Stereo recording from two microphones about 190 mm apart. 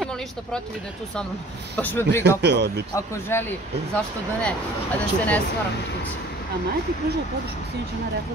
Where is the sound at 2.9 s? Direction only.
15° left (ahead or behind).